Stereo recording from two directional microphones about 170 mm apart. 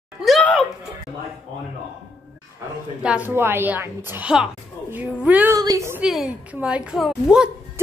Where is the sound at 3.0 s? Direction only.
10° right (ahead or behind).